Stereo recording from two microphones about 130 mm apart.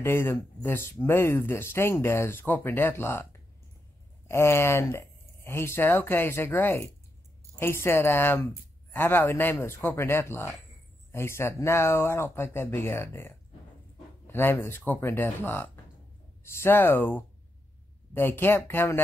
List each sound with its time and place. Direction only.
0.0 s speech: 20° left (ahead or behind)
4.3 s speech: 20° left (ahead or behind)